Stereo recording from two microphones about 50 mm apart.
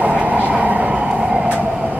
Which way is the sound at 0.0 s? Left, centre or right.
Right.